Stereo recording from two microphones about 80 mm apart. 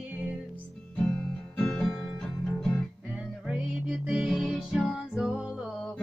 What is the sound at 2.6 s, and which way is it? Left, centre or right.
Music, centre.